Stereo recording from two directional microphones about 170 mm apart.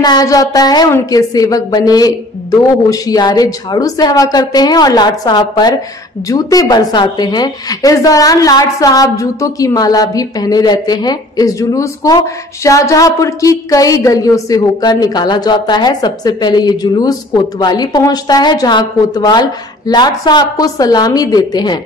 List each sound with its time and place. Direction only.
0.0 s a woman's voice: 25° left (ahead or behind)